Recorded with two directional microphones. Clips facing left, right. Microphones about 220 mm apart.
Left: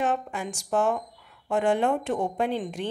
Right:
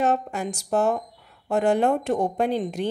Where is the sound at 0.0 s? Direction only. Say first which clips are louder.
Right 4 dB; 40° right (ahead or behind).